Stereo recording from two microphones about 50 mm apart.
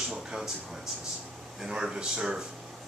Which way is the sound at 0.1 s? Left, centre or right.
Centre.